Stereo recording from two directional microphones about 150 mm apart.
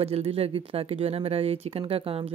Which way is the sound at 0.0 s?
40° right (ahead or behind).